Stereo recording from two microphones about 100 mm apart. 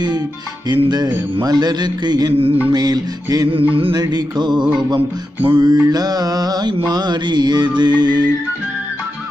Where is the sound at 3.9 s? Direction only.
45° right (ahead or behind).